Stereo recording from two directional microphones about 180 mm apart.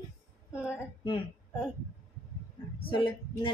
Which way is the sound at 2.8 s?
30° left (ahead or behind).